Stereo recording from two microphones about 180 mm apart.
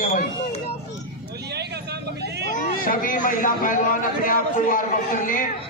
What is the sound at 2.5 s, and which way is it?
Speech, 50° left (ahead or behind).